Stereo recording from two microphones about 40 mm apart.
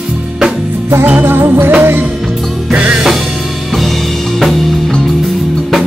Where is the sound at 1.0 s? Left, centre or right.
Right.